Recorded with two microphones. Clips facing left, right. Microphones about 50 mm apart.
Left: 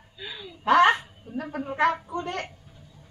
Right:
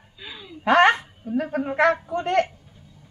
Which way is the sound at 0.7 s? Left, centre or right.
Right.